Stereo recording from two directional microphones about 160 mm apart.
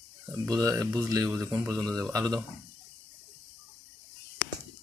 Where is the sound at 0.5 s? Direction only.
20° right (ahead or behind).